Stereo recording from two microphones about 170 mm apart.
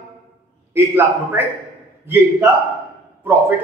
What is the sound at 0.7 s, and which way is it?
A man's voice, 15° right (ahead or behind).